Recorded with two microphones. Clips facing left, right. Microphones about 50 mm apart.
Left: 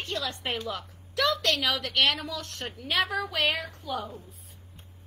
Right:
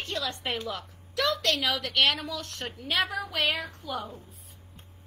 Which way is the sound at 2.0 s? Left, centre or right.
Right.